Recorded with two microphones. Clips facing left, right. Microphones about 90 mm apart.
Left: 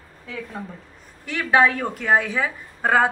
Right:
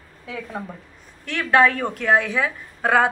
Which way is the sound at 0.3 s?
15° right (ahead or behind).